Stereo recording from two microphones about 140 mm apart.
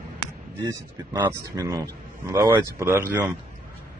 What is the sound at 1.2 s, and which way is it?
A man's voice, 25° right (ahead or behind).